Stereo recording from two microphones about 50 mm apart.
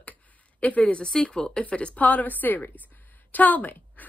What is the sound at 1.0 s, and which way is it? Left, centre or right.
A woman's voice, centre.